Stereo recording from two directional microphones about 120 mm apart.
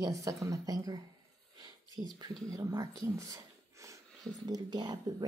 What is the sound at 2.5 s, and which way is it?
Speech, 30° right (ahead or behind).